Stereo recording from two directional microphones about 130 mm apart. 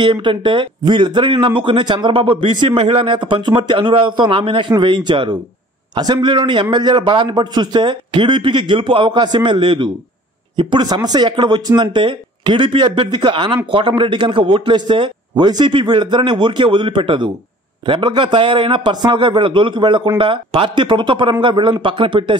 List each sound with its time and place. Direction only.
0.0 s a man's voice: 40° right (ahead or behind)